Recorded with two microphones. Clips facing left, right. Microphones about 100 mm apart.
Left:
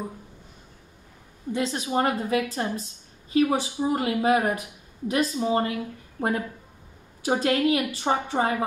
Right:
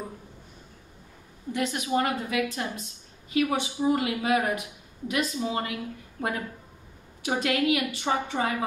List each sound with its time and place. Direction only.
1.5 s a woman's voice: 30° left (ahead or behind)
7.2 s a woman's voice: 35° left (ahead or behind)